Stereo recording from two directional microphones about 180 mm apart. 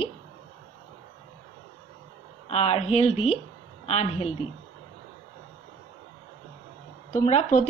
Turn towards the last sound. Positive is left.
turn(degrees=40)  # may be behind; listen again after turning